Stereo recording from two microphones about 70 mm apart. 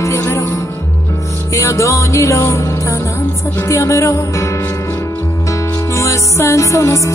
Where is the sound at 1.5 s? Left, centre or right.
Left.